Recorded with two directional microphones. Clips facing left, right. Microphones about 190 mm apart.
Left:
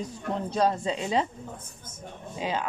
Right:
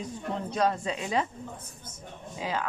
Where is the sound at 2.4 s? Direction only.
20° left (ahead or behind).